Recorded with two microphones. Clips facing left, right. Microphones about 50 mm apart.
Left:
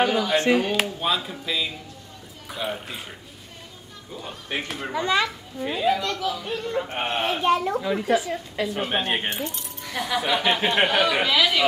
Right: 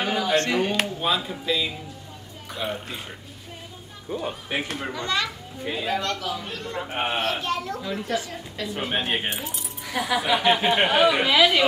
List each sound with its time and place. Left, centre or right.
0.0 s speech: centre
4.1 s speech: centre
4.5 s speech: centre
4.9 s a woman's voice: centre
5.6 s speech: centre
7.4 s a woman's voice: centre
8.6 s speech: centre